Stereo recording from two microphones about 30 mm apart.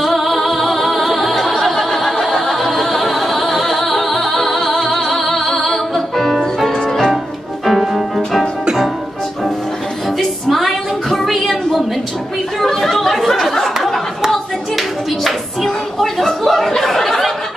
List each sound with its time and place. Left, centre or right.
0.0 s singing: centre
4.7 s music: centre
6.7 s music: left
7.6 s music: centre
10.1 s a sound: centre
12.5 s chatter: centre
14.3 s clapping: centre
16.4 s a sound: centre